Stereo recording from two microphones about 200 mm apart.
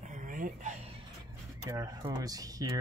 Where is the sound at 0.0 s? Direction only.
40° right (ahead or behind).